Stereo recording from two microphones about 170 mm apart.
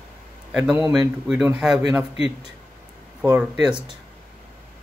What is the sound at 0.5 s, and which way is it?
Speech, 10° right (ahead or behind).